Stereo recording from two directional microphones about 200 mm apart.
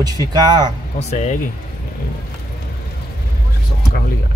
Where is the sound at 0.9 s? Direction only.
35° left (ahead or behind).